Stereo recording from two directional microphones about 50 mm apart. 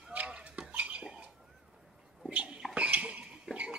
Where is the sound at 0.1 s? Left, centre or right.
Right.